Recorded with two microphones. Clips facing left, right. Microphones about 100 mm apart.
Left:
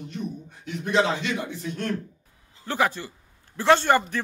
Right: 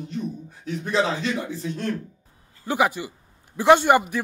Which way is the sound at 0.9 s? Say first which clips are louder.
Even; 35° right (ahead or behind).